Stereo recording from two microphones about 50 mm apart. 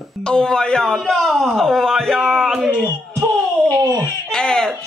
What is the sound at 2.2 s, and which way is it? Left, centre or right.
Speech, centre.